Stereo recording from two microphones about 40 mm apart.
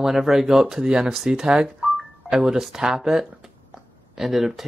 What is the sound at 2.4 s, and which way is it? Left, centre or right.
Speech, centre.